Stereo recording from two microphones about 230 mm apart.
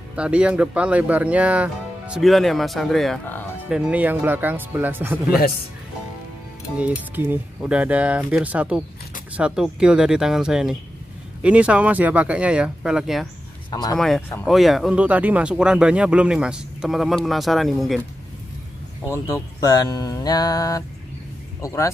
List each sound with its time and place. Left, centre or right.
0.1 s speech: centre
7.2 s speech: centre
13.7 s speech: centre
13.9 s speech: centre
19.0 s speech: centre